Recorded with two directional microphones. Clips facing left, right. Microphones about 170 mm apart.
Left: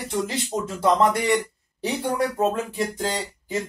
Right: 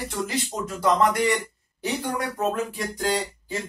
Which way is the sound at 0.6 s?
30° left (ahead or behind).